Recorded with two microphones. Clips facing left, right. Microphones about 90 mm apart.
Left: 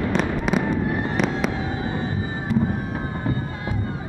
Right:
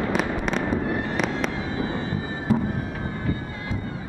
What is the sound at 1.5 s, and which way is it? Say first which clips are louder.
Vehicle: left 1 dB; 20° left (ahead or behind).